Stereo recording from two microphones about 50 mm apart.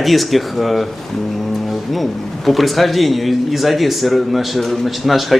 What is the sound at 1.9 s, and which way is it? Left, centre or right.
Speech, centre.